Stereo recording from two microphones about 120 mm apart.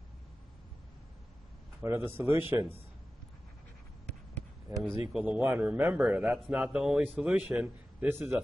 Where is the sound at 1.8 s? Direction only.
15° right (ahead or behind).